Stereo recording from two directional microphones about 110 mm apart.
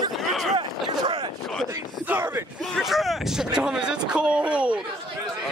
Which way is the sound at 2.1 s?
20° right (ahead or behind).